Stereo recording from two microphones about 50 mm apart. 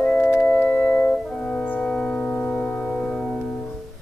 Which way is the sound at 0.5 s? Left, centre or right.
Left.